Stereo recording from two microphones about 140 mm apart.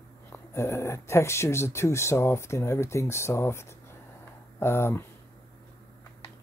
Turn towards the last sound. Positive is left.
turn(degrees=15)  # may be behind; listen again after turning